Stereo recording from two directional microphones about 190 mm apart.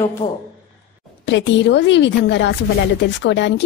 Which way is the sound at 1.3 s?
70° left (ahead or behind).